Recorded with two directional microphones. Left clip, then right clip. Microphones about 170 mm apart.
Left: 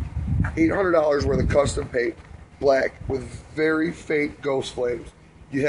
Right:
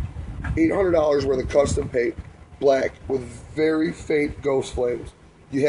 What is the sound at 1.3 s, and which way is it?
Speech, 55° right (ahead or behind).